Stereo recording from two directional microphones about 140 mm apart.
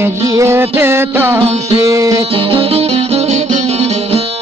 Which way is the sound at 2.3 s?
40° right (ahead or behind).